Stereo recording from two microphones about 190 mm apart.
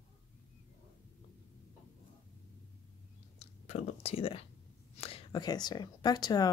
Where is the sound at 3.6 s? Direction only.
35° left (ahead or behind).